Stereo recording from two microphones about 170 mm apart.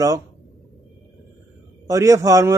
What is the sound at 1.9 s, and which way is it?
Speech, 20° right (ahead or behind).